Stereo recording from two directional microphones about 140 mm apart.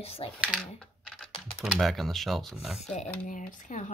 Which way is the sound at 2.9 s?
60° left (ahead or behind).